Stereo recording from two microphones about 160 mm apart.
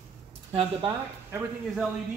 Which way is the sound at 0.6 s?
35° right (ahead or behind).